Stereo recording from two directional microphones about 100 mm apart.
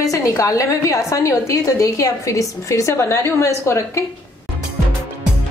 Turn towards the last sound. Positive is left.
turn(degrees=25)  # may be behind; listen again after turning